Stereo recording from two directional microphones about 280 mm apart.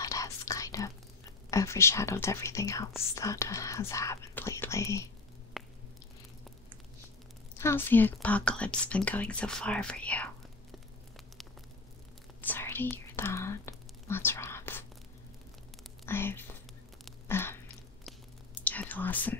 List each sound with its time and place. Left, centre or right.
0.0 s whispering: centre
1.5 s speech: centre
5.5 s squish: centre
7.5 s speech: centre
12.4 s whispering: centre
16.1 s speech: centre
17.0 s a sound: centre
18.0 s whispering: centre